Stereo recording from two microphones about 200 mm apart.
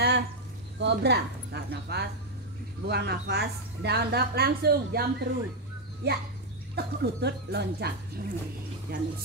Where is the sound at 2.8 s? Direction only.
55° right (ahead or behind).